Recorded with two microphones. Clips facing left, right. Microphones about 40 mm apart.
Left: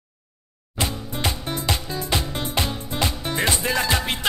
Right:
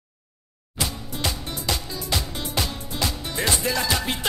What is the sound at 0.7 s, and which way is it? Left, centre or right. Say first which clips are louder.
Music: left 3 dB; left.